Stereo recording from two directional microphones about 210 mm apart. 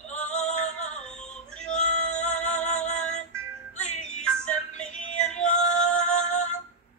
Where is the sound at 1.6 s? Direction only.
35° left (ahead or behind).